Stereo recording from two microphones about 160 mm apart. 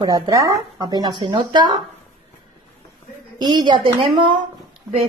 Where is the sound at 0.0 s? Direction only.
20° right (ahead or behind).